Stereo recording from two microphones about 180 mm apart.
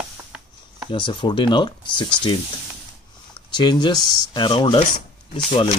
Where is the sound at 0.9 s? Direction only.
25° left (ahead or behind).